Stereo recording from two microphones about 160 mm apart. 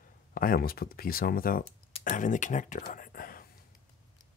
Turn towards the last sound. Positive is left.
turn(degrees=60)  # may be behind; listen again after turning